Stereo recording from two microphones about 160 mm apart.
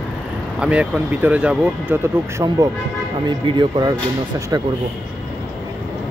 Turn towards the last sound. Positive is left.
turn(degrees=-25)  # may be behind; listen again after turning